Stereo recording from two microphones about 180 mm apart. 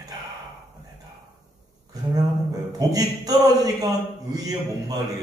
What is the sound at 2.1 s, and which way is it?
A man's voice, 20° right (ahead or behind).